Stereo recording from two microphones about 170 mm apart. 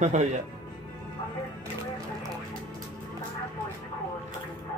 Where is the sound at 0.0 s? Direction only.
45° right (ahead or behind).